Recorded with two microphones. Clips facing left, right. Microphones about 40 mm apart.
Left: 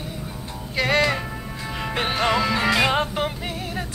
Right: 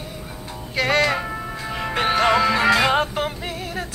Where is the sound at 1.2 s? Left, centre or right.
Centre.